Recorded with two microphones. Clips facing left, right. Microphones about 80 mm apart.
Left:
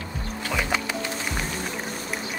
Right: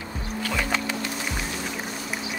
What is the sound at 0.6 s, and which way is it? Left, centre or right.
Music, centre.